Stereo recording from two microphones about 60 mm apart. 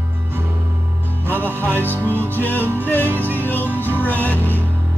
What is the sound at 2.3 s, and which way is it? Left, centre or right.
Music, left.